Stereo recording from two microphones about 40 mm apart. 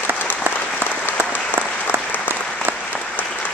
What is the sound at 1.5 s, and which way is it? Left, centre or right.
Applause, left.